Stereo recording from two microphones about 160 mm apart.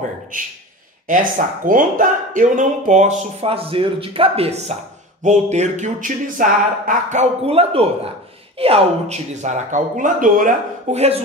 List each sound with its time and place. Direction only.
1.0 s speech: 55° right (ahead or behind); by 11.2 s 40° right (ahead or behind)